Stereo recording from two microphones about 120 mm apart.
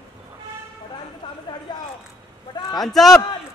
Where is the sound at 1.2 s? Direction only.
40° left (ahead or behind).